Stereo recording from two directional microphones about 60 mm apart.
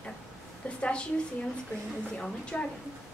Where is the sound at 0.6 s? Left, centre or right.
Centre.